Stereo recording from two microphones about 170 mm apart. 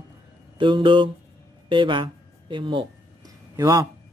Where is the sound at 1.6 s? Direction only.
30° right (ahead or behind).